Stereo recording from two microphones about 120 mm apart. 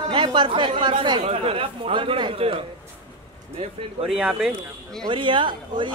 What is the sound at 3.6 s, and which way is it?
Speech, 55° right (ahead or behind).